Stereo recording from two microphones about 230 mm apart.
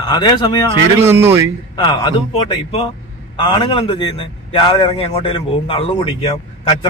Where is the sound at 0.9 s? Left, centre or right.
Centre.